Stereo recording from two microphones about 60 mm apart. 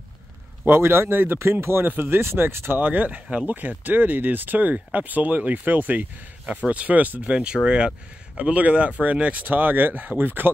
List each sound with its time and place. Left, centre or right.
0.7 s speech: right